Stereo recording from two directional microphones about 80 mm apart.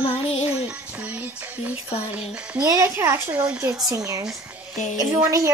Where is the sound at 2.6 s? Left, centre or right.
Right.